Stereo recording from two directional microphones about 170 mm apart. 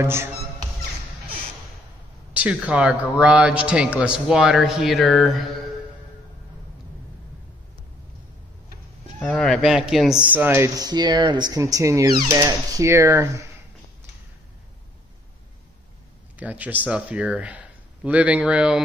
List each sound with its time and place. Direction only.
0.0 s music: 15° right (ahead or behind)
2.3 s a man's voice: 5° right (ahead or behind)
9.2 s speech: 5° left (ahead or behind); by 13.3 s 15° right (ahead or behind)
16.3 s speech: 10° right (ahead or behind)